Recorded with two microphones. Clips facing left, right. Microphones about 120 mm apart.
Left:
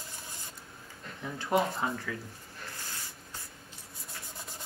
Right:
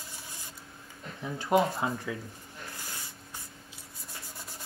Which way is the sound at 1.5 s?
10° right (ahead or behind).